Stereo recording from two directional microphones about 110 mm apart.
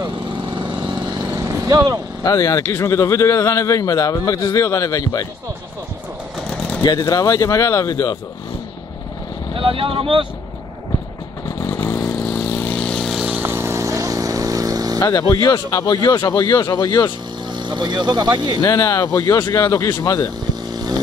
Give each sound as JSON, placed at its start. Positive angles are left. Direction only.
{"t": 0.0, "sound": "lawn mower", "side_deg": -45}
{"t": 1.3, "sound": "vehicle", "side_deg": -30}
{"t": 2.2, "sound": "a man's voice", "side_deg": 30}
{"t": 6.8, "sound": "speech", "side_deg": 40}
{"t": 9.6, "sound": "speech", "side_deg": -55}
{"t": 12.4, "sound": "vehicle", "side_deg": 20}
{"t": 13.2, "sound": "vehicle", "side_deg": -15}
{"t": 15.0, "sound": "speech", "side_deg": 30}
{"t": 17.6, "sound": "speech", "side_deg": -40}
{"t": 18.6, "sound": "a man's voice", "side_deg": 30}